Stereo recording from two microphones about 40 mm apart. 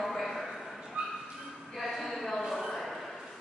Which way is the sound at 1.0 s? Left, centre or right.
Right.